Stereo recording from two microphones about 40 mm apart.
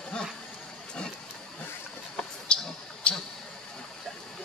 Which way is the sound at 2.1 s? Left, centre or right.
Left.